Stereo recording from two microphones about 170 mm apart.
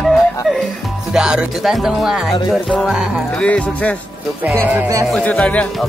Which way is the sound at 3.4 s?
10° left (ahead or behind).